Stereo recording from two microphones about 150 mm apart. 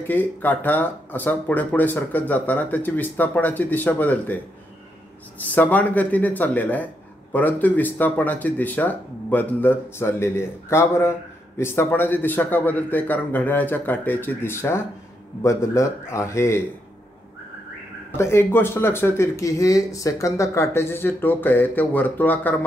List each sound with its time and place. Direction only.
0.0 s speech: 10° left (ahead or behind)
5.4 s speech: 10° left (ahead or behind)
18.1 s speech: 15° left (ahead or behind)